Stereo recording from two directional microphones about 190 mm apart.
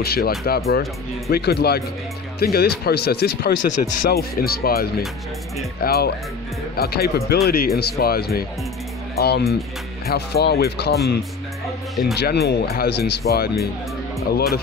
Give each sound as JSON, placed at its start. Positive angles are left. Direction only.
{"t": 0.0, "sound": "speech", "side_deg": 55}
{"t": 3.6, "sound": "speech", "side_deg": 40}
{"t": 4.1, "sound": "speech", "side_deg": 55}
{"t": 11.9, "sound": "speech", "side_deg": 0}
{"t": 12.2, "sound": "speech", "side_deg": 60}